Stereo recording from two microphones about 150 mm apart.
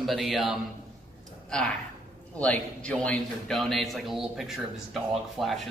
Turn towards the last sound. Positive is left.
turn(degrees=0)  # may be behind; listen again after turning